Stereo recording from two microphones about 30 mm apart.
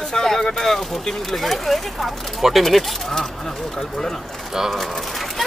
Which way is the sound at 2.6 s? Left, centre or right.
Centre.